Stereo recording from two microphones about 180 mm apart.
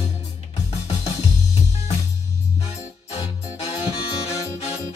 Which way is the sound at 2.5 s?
35° left (ahead or behind).